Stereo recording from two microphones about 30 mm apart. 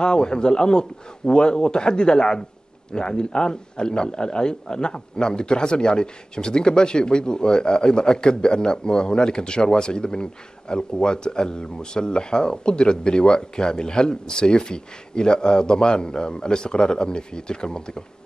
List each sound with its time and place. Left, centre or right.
0.0 s a man's voice: left